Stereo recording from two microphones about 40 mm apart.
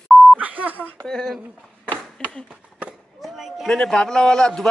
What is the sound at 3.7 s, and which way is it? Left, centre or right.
Speech, centre.